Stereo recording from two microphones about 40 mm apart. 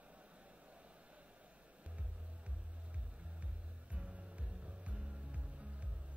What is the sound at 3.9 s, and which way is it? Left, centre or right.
Music, right.